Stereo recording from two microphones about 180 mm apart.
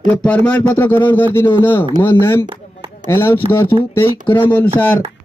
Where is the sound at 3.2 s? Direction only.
10° left (ahead or behind).